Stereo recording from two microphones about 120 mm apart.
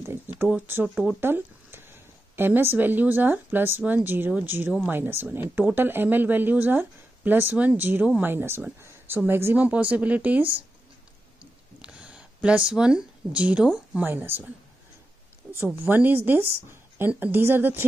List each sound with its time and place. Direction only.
0.0 s speech: 20° right (ahead or behind)
11.8 s speech: 10° right (ahead or behind)
15.5 s speech: 15° right (ahead or behind)